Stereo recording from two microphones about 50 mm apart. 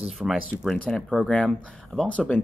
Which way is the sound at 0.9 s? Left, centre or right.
Centre.